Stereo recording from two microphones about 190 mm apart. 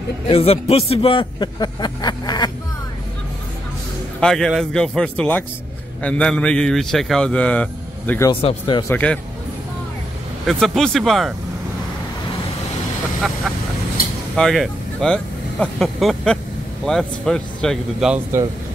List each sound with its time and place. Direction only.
0.3 s a man's voice: 30° left (ahead or behind)
4.2 s speech: 5° left (ahead or behind)
8.3 s a man's voice: 25° left (ahead or behind)
8.9 s speech: 5° left (ahead or behind)
10.4 s speech: centre (ahead or behind)
14.3 s speech: centre (ahead or behind)